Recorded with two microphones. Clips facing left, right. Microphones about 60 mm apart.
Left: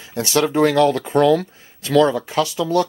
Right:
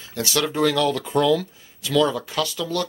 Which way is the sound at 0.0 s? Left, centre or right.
Left.